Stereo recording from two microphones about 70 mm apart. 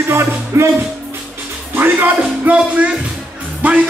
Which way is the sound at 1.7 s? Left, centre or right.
Right.